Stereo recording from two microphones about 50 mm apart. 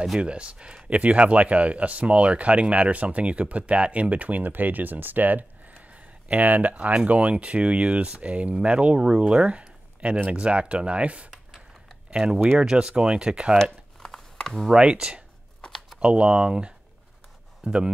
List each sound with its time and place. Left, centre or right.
0.2 s speech: right
13.6 s a sound: centre
14.6 s speech: centre